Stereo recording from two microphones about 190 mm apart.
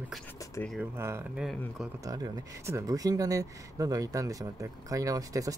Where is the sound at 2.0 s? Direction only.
20° right (ahead or behind).